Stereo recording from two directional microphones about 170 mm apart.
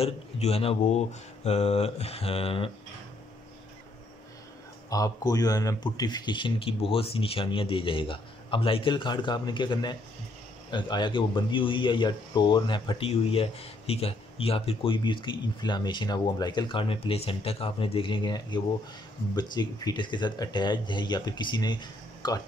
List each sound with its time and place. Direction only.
0.0 s speech: 35° left (ahead or behind)
4.8 s speech: 20° left (ahead or behind)